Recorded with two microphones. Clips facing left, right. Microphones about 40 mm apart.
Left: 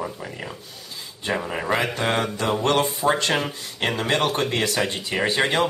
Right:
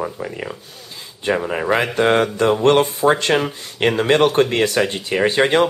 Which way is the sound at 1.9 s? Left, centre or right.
Right.